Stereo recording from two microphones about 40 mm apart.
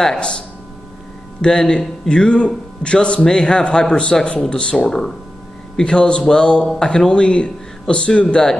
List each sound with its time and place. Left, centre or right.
1.4 s speech: centre